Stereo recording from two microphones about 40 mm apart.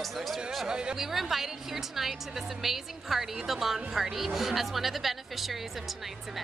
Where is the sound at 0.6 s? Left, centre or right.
Centre.